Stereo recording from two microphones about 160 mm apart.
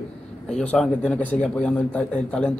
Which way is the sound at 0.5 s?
5° left (ahead or behind).